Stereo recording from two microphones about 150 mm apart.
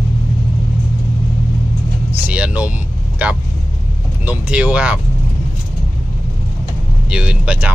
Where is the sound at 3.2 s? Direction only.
10° right (ahead or behind).